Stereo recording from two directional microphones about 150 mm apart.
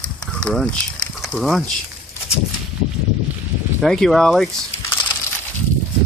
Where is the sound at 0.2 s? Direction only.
5° left (ahead or behind).